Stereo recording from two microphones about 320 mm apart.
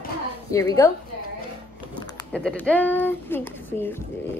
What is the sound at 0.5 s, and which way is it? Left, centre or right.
Speech, centre.